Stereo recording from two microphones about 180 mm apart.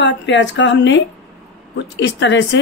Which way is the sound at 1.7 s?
80° left.